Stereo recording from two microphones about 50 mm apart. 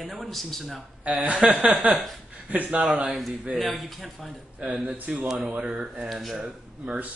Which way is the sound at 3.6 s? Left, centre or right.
Centre.